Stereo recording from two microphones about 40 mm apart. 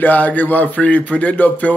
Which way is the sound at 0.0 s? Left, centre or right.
Left.